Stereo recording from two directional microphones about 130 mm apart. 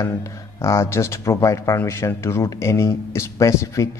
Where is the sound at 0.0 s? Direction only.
25° left (ahead or behind).